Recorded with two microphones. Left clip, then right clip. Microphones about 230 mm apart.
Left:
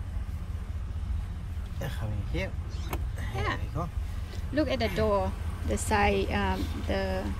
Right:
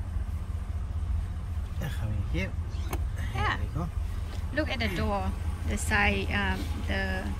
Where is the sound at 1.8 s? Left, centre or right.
Left.